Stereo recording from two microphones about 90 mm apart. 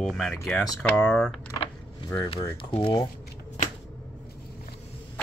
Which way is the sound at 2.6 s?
75° left (ahead or behind).